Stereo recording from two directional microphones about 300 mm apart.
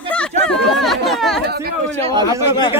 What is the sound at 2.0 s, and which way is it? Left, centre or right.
Speech, centre.